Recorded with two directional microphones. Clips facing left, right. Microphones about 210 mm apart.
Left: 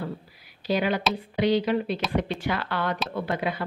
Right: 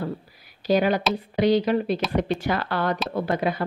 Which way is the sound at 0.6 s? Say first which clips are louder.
Right 4 dB; 45° right (ahead or behind).